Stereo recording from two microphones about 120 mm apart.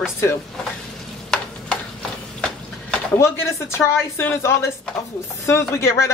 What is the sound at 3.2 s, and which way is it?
Speech, 20° left (ahead or behind).